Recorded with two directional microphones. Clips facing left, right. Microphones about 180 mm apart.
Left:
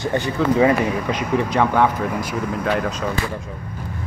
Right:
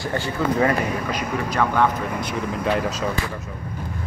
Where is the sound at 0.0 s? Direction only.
20° left (ahead or behind).